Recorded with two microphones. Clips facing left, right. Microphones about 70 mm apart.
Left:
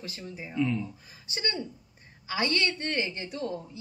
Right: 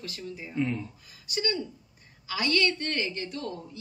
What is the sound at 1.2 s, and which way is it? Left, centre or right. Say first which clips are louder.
A woman's voice: right 3 dB; left.